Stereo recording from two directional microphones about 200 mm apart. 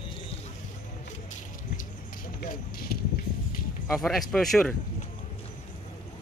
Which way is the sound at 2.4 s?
50° left (ahead or behind).